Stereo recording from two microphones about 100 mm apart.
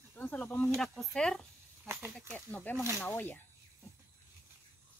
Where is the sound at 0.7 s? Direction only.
5° left (ahead or behind).